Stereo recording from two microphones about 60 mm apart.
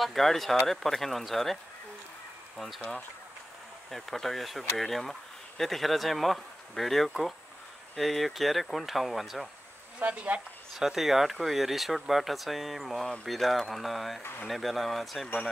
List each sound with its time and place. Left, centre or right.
0.0 s speech: centre
3.9 s speech: centre
9.9 s speech: right
10.8 s speech: centre